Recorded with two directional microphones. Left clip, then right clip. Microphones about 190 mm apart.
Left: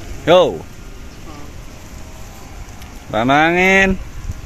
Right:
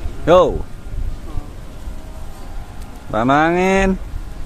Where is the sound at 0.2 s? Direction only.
5° right (ahead or behind).